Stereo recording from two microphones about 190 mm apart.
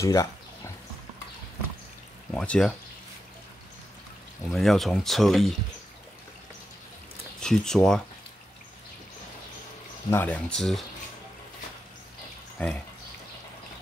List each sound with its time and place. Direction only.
0.0 s speech: 15° left (ahead or behind)
2.3 s speech: 5° left (ahead or behind)
4.5 s speech: centre (ahead or behind)
7.3 s speech: 5° left (ahead or behind)
10.1 s speech: 10° left (ahead or behind)
12.6 s speech: 5° left (ahead or behind)